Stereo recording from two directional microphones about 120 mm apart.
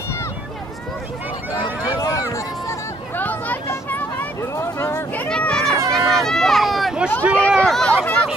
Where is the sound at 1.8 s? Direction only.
35° left (ahead or behind).